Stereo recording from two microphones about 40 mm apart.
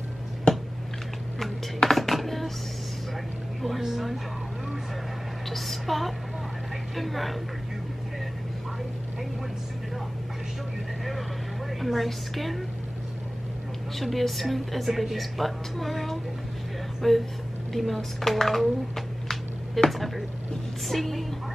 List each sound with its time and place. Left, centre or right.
0.5 s a sound: left
1.4 s music: centre
3.8 s speech: centre
5.5 s a sound: centre
7.0 s speech: centre
11.8 s speech: centre
13.9 s speech: centre
18.2 s a sound: centre
19.9 s speech: centre